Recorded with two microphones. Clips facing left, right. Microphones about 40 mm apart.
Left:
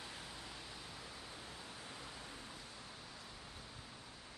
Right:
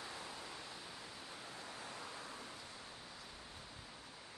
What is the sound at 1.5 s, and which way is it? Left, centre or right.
Pink noise, right.